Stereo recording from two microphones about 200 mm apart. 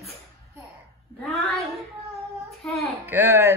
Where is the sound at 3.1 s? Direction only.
10° right (ahead or behind).